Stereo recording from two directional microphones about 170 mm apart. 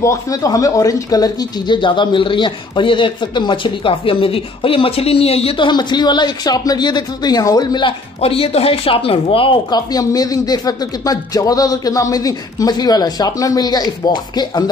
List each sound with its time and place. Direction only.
0.0 s speech: 20° left (ahead or behind)